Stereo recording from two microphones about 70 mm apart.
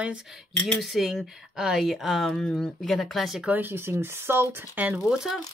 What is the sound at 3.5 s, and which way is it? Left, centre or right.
Speech, right.